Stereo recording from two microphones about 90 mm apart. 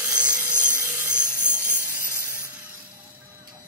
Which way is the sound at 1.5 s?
15° right (ahead or behind).